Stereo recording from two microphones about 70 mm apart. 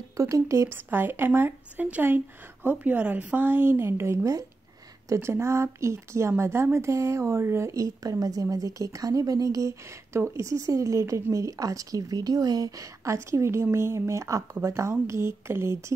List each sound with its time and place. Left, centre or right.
0.2 s speech: right
0.8 s a woman's voice: right